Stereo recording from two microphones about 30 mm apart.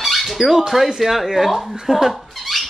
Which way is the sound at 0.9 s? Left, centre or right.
Centre.